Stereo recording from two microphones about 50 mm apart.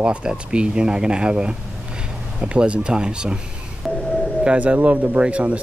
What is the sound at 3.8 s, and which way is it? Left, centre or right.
Doorbell, centre.